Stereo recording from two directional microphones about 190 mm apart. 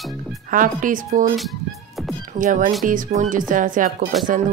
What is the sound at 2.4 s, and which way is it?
Speech, 45° right (ahead or behind).